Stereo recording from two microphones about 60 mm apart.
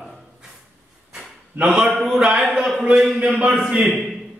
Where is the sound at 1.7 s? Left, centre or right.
Centre.